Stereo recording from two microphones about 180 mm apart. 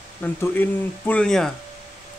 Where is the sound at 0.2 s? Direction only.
10° left (ahead or behind).